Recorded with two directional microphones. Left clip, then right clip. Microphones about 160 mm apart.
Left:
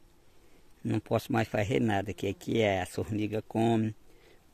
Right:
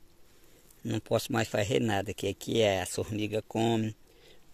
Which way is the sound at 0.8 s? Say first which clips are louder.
Right 1 dB; 45° left (ahead or behind).